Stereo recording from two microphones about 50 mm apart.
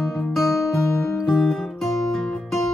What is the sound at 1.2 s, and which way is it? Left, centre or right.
Music, centre.